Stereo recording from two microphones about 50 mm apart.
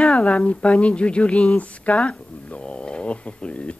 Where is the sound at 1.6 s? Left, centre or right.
Left.